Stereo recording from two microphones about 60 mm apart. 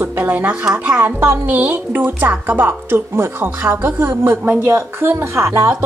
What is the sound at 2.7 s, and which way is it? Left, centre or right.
A woman's voice, right.